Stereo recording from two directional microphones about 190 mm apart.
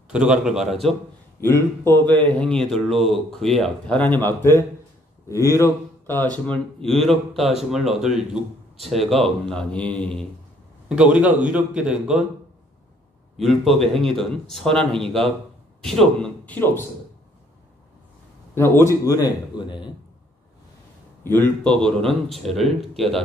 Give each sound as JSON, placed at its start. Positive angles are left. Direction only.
{"t": 0.1, "sound": "speech", "side_deg": -5}
{"t": 1.4, "sound": "speech", "side_deg": 15}
{"t": 5.3, "sound": "speech", "side_deg": 15}
{"t": 10.9, "sound": "speech", "side_deg": -5}
{"t": 13.4, "sound": "speech", "side_deg": 0}
{"t": 18.5, "sound": "speech", "side_deg": 15}
{"t": 21.2, "sound": "speech", "side_deg": 10}